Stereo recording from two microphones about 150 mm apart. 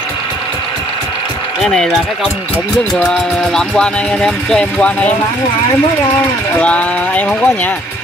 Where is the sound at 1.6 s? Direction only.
Centre (ahead or behind).